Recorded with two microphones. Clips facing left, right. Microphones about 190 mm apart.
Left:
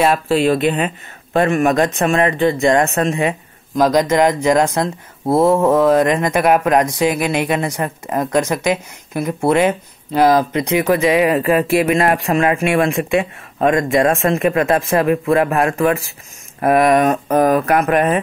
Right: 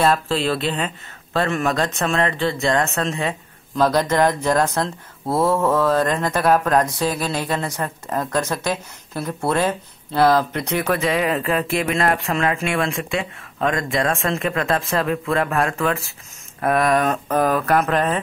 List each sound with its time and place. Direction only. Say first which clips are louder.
0.0 s speech: left 4 dB; 10° left (ahead or behind)